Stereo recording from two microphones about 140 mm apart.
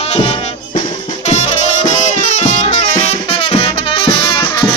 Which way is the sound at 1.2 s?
55° left (ahead or behind).